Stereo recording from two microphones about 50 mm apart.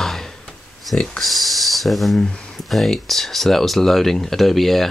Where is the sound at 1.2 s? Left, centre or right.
Centre.